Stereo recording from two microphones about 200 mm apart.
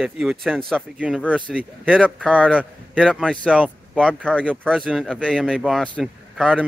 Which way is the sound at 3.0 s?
Centre (ahead or behind).